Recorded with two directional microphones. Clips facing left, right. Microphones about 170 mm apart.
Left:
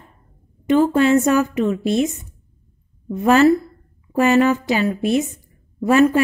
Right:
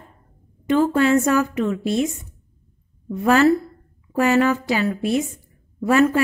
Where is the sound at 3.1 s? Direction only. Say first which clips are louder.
Left 2 dB; 20° left (ahead or behind).